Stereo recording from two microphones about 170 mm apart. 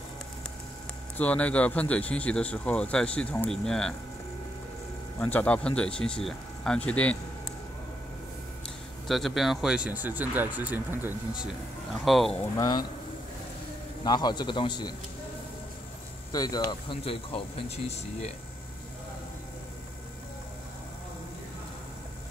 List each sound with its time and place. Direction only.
1.1 s speech: 10° left (ahead or behind)
5.2 s speech: 10° left (ahead or behind)
9.0 s speech: centre (ahead or behind)
12.5 s a man's voice: 25° left (ahead or behind)
14.0 s a man's voice: 25° left (ahead or behind)
16.3 s speech: 25° left (ahead or behind); by 18.3 s 40° left (ahead or behind)